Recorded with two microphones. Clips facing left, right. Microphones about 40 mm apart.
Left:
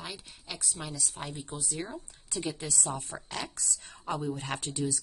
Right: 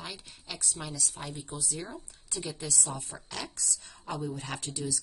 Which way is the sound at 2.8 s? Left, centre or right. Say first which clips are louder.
Left 2 dB; left.